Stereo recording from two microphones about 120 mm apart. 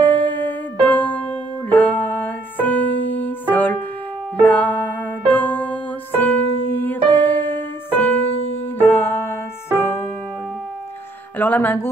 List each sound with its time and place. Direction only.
0.0 s music: 15° left (ahead or behind)
11.3 s speech: 15° left (ahead or behind)